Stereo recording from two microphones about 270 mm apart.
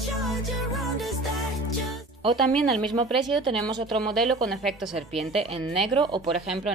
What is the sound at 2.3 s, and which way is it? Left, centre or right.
Speech, centre.